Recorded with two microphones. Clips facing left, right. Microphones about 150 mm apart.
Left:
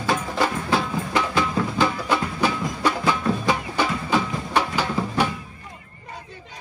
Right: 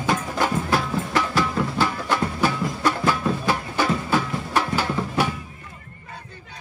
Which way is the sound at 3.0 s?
5° right (ahead or behind).